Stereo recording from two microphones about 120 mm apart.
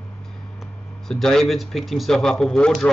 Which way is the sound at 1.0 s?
5° left (ahead or behind).